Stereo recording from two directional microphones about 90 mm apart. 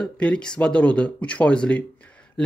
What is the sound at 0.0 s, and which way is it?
A man's voice, 10° left (ahead or behind).